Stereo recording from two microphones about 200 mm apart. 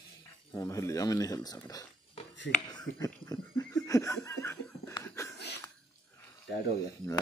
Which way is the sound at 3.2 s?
15° left (ahead or behind).